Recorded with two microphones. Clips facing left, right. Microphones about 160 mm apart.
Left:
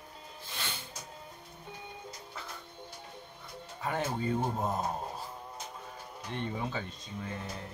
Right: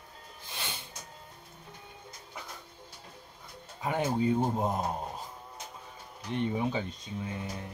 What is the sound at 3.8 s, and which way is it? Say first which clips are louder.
Speech: right 4 dB; 15° right (ahead or behind).